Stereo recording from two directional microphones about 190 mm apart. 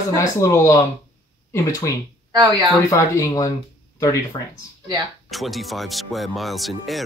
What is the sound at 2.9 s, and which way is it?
Speech, 15° left (ahead or behind).